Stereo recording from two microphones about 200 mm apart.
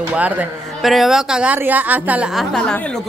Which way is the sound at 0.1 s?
5° right (ahead or behind).